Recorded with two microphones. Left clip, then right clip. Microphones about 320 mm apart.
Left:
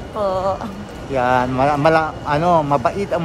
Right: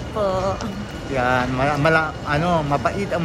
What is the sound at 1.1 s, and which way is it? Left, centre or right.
A man's voice, centre.